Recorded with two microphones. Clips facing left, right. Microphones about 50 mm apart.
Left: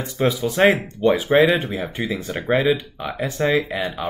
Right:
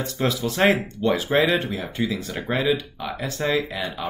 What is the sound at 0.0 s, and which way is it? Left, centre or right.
Speech, centre.